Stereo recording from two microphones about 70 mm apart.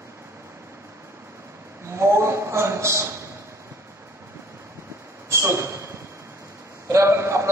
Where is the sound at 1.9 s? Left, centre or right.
Right.